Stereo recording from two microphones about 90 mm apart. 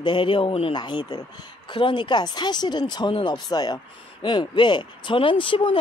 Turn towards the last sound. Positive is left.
turn(degrees=70)  # may be behind; listen again after turning